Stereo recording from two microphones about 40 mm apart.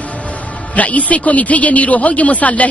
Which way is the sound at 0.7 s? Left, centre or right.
Left.